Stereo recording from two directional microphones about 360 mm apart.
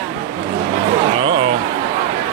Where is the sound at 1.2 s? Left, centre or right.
Centre.